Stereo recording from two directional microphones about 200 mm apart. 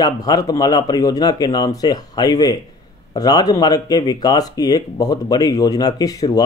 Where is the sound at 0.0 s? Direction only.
20° left (ahead or behind).